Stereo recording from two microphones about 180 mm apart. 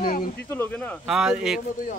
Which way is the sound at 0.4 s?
10° left (ahead or behind).